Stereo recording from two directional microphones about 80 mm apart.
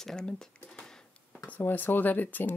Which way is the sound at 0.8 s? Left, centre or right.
Centre.